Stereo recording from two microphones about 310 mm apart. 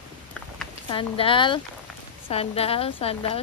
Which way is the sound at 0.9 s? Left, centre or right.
Centre.